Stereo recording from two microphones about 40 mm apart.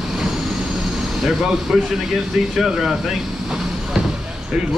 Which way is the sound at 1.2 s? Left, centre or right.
Centre.